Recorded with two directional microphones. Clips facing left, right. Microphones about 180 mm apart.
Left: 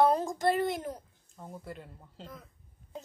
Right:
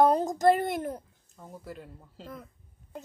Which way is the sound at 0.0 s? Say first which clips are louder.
Right 4 dB; 40° right (ahead or behind).